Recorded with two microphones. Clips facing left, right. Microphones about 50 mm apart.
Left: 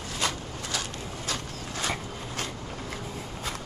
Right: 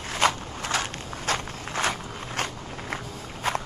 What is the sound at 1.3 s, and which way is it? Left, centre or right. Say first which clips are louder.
Vehicle: right 8 dB; right.